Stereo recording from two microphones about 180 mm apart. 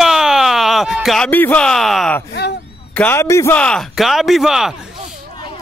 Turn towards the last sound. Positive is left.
turn(degrees=0)  # may be behind; listen again after turning